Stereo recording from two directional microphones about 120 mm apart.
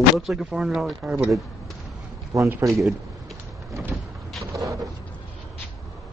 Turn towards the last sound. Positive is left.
turn(degrees=-25)  # may be behind; listen again after turning